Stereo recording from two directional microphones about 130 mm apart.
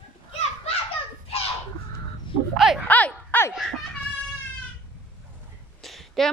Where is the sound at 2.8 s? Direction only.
10° left (ahead or behind).